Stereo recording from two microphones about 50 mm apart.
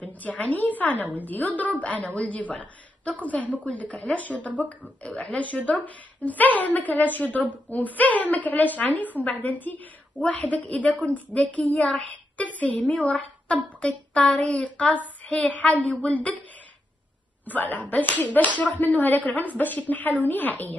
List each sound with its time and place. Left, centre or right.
0.0 s a woman's voice: left
5.0 s a woman's voice: left
17.5 s a woman's voice: left